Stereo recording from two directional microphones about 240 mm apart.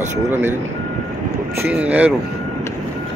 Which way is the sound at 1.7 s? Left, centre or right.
Centre.